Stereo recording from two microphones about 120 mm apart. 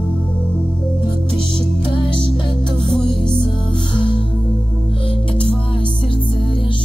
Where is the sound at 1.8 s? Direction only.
45° left (ahead or behind).